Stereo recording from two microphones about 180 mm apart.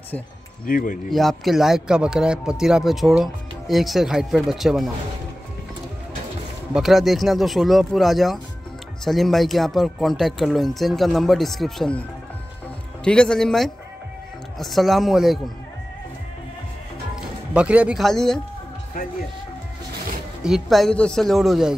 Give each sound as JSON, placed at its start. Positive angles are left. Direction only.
{"t": 0.7, "sound": "speech", "side_deg": 50}
{"t": 1.1, "sound": "speech", "side_deg": 0}
{"t": 6.7, "sound": "speech", "side_deg": 0}
{"t": 13.0, "sound": "speech", "side_deg": 5}
{"t": 17.1, "sound": "speech", "side_deg": -5}
{"t": 20.4, "sound": "speech", "side_deg": 0}